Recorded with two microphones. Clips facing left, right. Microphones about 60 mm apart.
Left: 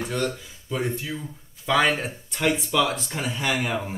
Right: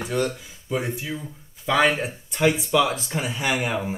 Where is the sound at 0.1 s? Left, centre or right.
Centre.